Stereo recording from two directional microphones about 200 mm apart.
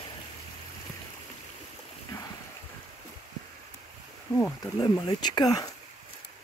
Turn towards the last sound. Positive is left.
turn(degrees=20)  # may be behind; listen again after turning